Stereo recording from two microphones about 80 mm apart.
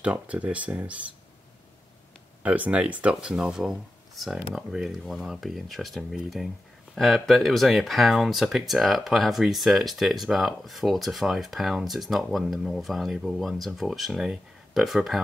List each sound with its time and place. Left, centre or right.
0.0 s speech: centre
2.4 s speech: centre